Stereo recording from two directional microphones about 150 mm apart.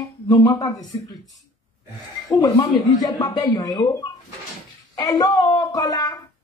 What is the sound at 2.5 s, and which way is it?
Speech, 25° left (ahead or behind).